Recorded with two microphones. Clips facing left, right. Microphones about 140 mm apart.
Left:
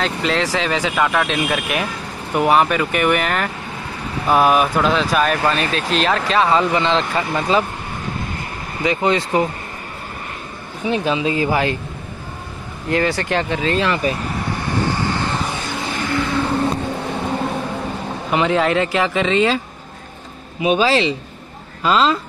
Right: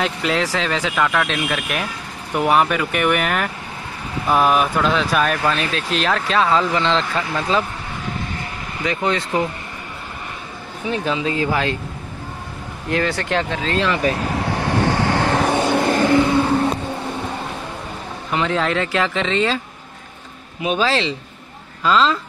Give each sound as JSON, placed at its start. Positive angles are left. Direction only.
{"t": 0.0, "sound": "speech", "side_deg": -5}
{"t": 8.8, "sound": "speech", "side_deg": 10}
{"t": 10.9, "sound": "speech", "side_deg": 15}
{"t": 12.9, "sound": "speech", "side_deg": 0}
{"t": 14.2, "sound": "vehicle", "side_deg": -80}
{"t": 15.9, "sound": "vehicle", "side_deg": -40}
{"t": 18.3, "sound": "speech", "side_deg": 10}
{"t": 20.6, "sound": "speech", "side_deg": 10}